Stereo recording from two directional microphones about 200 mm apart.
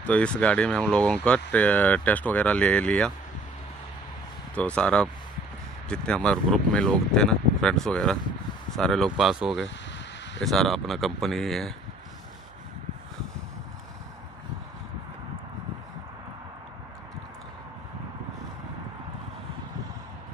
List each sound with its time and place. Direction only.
0.0 s speech: 5° left (ahead or behind)
4.6 s speech: 5° left (ahead or behind)